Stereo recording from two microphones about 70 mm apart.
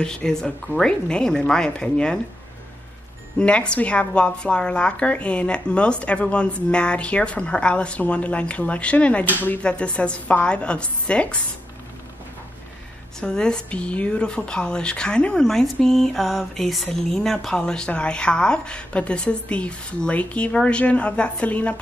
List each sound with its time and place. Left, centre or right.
0.0 s speech: centre
3.3 s speech: centre
13.2 s speech: centre